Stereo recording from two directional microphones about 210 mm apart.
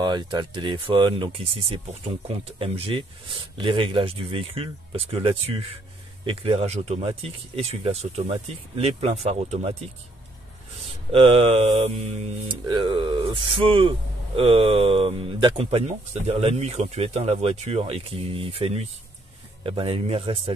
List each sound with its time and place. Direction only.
0.0 s speech: 20° right (ahead or behind)
11.1 s speech: 25° right (ahead or behind)